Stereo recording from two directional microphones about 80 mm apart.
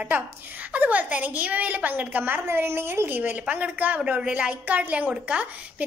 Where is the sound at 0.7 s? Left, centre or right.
Right.